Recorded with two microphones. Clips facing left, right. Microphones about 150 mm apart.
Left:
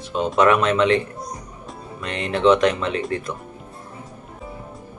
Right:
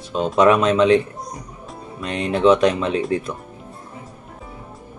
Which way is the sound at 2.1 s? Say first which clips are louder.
Right 1 dB; 15° right (ahead or behind).